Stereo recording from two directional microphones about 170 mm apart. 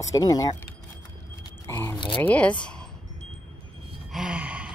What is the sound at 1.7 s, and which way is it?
Speech, 15° left (ahead or behind).